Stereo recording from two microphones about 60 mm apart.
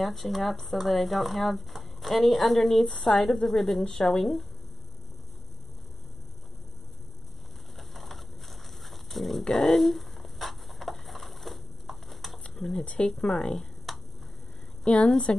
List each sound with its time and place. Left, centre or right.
0.0 s speech: centre
7.7 s a sound: centre
12.5 s speech: centre
12.8 s speech: centre
13.9 s a sound: centre
14.9 s speech: centre